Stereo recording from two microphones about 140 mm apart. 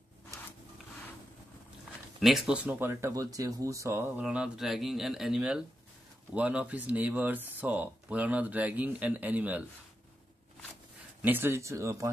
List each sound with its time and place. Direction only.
2.1 s speech: centre (ahead or behind)
11.2 s speech: 15° right (ahead or behind)